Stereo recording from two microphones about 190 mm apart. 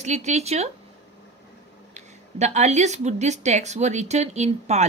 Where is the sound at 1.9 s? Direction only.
35° right (ahead or behind).